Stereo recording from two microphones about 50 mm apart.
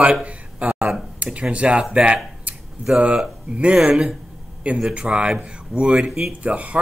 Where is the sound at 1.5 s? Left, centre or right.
Right.